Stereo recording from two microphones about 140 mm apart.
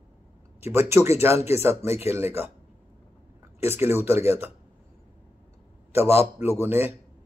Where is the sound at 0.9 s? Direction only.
20° right (ahead or behind).